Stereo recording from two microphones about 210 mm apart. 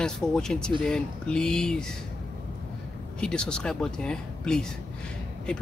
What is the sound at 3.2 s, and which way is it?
Speech, 5° left (ahead or behind).